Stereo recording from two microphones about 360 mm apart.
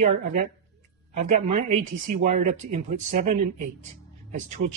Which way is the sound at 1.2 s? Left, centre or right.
Centre.